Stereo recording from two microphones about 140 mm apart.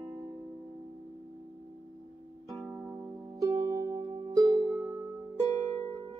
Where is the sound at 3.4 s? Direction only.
25° right (ahead or behind).